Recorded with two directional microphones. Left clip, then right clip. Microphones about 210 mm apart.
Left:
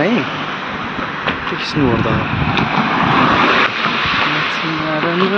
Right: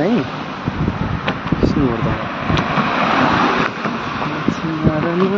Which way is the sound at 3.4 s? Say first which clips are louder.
Left 4 dB; 35° right (ahead or behind).